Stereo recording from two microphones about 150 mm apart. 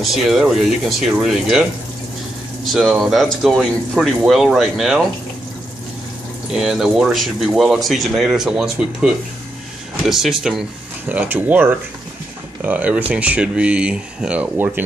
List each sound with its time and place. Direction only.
0.0 s speech: centre (ahead or behind)
2.6 s speech: centre (ahead or behind)
6.5 s speech: 5° right (ahead or behind)